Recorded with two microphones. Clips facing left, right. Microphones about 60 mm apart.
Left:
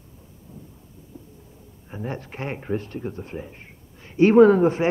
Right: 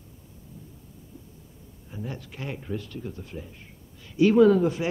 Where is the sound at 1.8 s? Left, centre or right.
Left.